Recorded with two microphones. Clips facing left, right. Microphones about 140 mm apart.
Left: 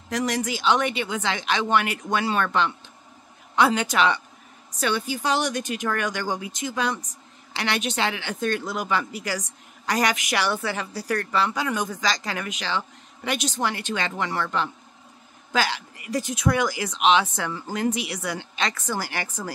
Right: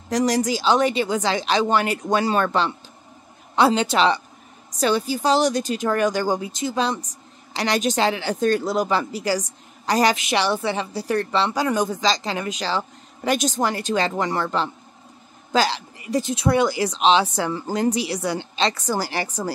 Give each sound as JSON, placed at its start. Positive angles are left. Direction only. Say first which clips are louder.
{"t": 0.1, "sound": "a woman's voice", "louder": "right 6 dB", "side_deg": -35}